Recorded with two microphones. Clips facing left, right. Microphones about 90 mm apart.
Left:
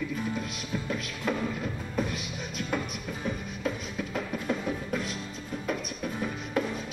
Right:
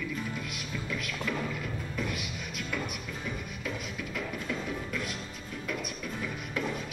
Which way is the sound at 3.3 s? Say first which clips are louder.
Left 6 dB; 40° left (ahead or behind).